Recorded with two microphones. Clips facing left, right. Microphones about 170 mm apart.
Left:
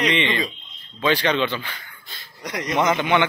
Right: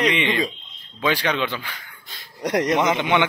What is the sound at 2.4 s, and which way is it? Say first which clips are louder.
Speech: right 9 dB; 70° right (ahead or behind).